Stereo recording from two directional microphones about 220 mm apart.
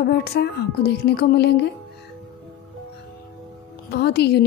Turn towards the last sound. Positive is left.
turn(degrees=50)  # may be behind; listen again after turning